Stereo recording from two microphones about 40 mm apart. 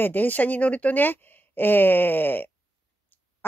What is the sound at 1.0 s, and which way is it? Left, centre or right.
Speech, left.